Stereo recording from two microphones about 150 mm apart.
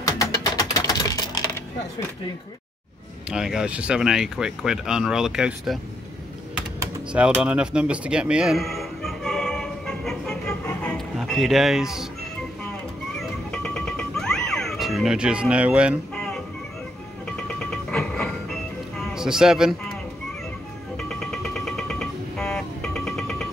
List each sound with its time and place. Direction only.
0.0 s music: 20° left (ahead or behind)
3.3 s speech: 5° right (ahead or behind)
7.1 s music: 5° right (ahead or behind); by 11.0 s 10° left (ahead or behind)
11.1 s speech: centre (ahead or behind)
13.2 s music: 5° left (ahead or behind)
17.6 s music: 5° left (ahead or behind)
21.0 s music: centre (ahead or behind)